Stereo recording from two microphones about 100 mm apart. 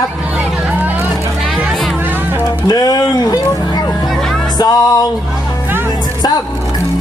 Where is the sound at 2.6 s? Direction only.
40° left (ahead or behind).